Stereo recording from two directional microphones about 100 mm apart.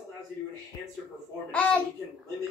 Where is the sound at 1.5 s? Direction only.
15° left (ahead or behind).